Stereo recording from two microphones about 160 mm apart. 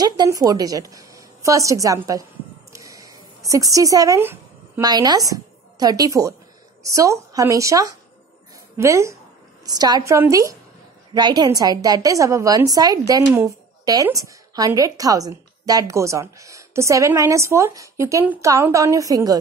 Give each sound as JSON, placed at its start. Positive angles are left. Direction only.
{"t": 0.0, "sound": "a woman's voice", "side_deg": -25}